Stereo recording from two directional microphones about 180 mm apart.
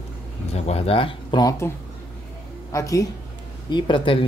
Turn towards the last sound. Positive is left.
turn(degrees=30)  # may be behind; listen again after turning